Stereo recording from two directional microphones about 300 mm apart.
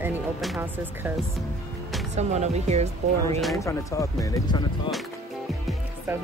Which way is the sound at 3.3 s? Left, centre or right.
Centre.